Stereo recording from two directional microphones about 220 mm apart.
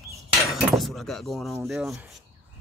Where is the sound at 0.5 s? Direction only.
Centre (ahead or behind).